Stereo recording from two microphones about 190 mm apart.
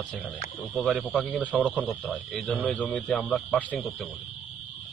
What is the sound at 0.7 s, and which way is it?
Speech, centre (ahead or behind).